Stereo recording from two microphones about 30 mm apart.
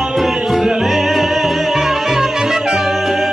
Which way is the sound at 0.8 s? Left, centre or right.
Centre.